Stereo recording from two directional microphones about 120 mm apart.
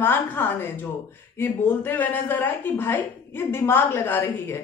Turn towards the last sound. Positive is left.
turn(degrees=20)  # may be behind; listen again after turning